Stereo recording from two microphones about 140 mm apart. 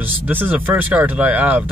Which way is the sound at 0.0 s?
15° right (ahead or behind).